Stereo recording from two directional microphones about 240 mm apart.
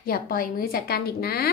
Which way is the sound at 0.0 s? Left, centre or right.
Left.